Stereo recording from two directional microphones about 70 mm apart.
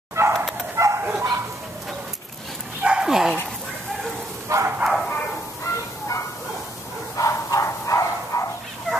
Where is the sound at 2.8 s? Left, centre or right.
Centre.